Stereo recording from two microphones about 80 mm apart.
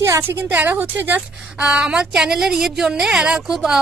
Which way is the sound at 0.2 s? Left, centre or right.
Right.